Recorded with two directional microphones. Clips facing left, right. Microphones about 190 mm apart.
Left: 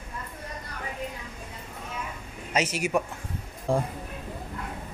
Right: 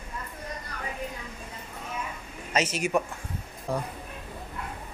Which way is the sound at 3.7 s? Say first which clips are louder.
Left 5 dB; 25° left (ahead or behind).